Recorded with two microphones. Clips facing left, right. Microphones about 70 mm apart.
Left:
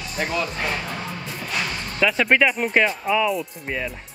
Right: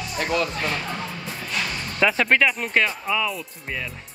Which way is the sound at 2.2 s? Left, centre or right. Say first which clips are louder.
Left 2 dB; centre.